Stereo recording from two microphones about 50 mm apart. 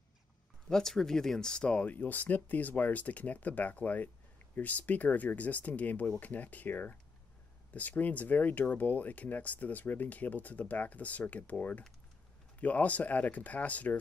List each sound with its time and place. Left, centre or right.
0.7 s speech: centre
1.7 s speech: left